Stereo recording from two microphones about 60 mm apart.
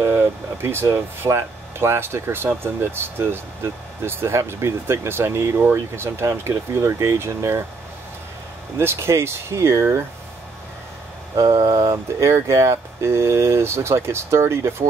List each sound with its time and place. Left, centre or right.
0.0 s speech: right
8.7 s speech: right
11.3 s speech: right